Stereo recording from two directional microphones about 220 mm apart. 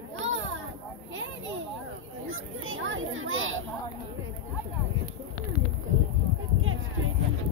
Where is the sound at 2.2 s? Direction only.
65° right (ahead or behind).